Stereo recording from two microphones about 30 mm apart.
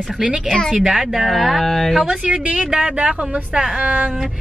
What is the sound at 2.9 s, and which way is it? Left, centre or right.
Speech, right.